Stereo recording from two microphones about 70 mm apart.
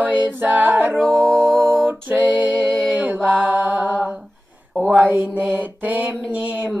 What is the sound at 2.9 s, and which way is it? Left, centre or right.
Mantra, right.